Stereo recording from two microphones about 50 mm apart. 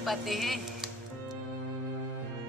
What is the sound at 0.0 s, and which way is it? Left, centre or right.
Speech, centre.